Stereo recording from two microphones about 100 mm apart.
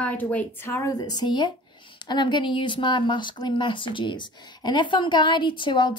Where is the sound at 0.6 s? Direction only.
30° left (ahead or behind).